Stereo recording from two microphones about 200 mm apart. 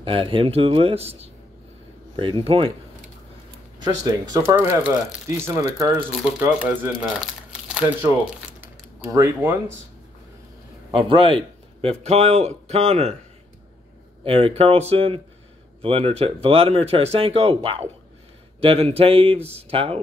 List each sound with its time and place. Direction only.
0.0 s speech: 25° right (ahead or behind)
3.8 s speech: 20° right (ahead or behind); by 8.1 s 5° right (ahead or behind)
9.1 s speech: 15° right (ahead or behind)
10.9 s a man's voice: 25° right (ahead or behind)
14.2 s speech: 30° right (ahead or behind)